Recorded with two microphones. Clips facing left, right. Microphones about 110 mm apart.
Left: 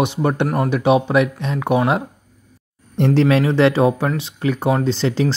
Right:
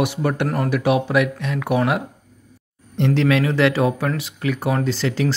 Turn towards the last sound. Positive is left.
turn(degrees=25)  # may be behind; listen again after turning